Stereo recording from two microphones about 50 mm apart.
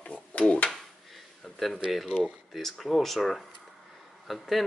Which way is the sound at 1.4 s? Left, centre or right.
Centre.